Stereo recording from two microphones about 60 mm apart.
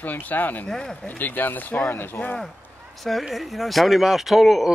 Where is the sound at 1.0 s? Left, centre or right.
Left.